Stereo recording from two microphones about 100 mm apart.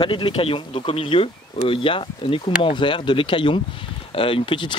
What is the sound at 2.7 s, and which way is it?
Speech, 55° left (ahead or behind).